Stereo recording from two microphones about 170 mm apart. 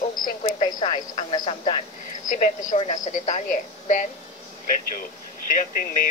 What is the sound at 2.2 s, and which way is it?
Speech, 45° left (ahead or behind).